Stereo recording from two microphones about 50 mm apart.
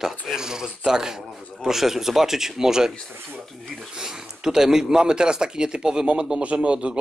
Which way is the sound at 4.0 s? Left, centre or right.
Centre.